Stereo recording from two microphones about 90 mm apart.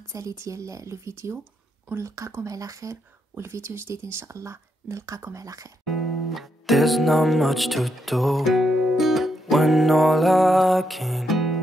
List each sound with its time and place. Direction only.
0.1 s speech: 35° right (ahead or behind)
5.9 s music: centre (ahead or behind)